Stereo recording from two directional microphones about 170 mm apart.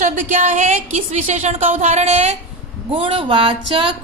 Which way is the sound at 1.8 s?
40° right (ahead or behind).